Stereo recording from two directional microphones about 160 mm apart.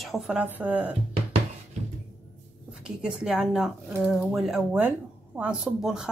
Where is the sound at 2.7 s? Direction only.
5° right (ahead or behind).